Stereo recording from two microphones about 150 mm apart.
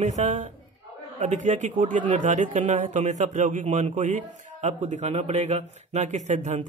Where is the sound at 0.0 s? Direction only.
50° right (ahead or behind).